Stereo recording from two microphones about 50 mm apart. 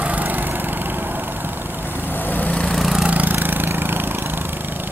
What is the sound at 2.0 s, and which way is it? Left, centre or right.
Vehicle, left.